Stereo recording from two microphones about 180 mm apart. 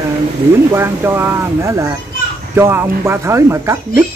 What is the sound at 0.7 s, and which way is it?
Speech, 15° right (ahead or behind).